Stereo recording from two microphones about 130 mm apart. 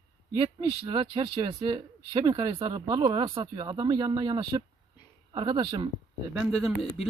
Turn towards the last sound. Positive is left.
turn(degrees=0)  # may be behind; listen again after turning